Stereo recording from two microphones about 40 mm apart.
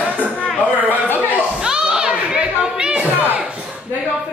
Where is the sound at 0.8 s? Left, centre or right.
Left.